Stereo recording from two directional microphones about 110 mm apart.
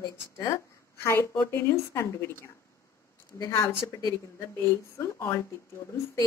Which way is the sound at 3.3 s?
30° left (ahead or behind).